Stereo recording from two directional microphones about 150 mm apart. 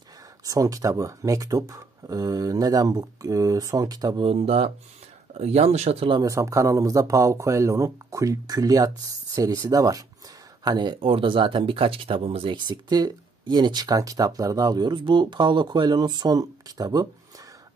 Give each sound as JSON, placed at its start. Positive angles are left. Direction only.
{"t": 0.5, "sound": "speech", "side_deg": -20}
{"t": 4.3, "sound": "speech", "side_deg": -40}
{"t": 6.2, "sound": "speech", "side_deg": -20}